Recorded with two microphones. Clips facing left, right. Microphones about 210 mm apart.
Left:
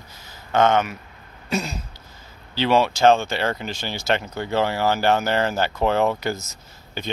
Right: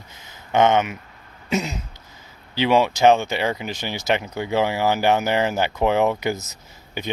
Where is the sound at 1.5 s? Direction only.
20° right (ahead or behind).